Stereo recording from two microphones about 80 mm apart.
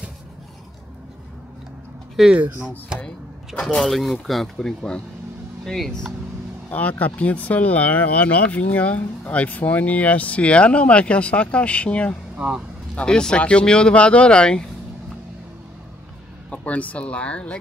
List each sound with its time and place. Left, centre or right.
2.1 s speech: centre
3.6 s speech: centre
6.7 s speech: centre
12.4 s speech: centre
12.9 s speech: centre
16.4 s speech: centre